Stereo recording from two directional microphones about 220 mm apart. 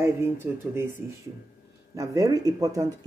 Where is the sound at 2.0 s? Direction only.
15° right (ahead or behind).